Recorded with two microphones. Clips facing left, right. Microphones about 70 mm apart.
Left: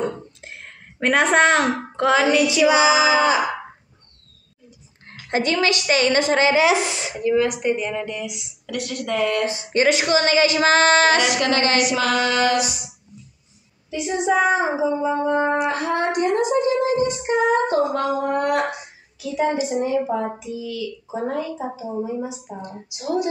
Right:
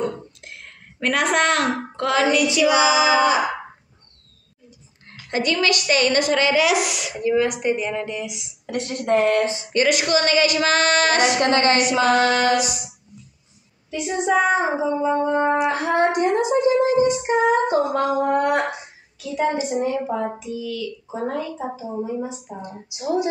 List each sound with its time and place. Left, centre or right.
0.0 s whispering: left
1.0 s a woman's voice: left
5.3 s a woman's voice: left
7.2 s a woman's voice: centre
8.6 s speech: right
9.6 s a woman's voice: left
11.1 s speech: right
13.8 s a woman's voice: centre
15.7 s female singing: right
19.1 s a woman's voice: centre
22.6 s female singing: centre